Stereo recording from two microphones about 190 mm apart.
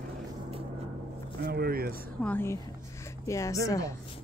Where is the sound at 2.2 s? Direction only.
10° left (ahead or behind).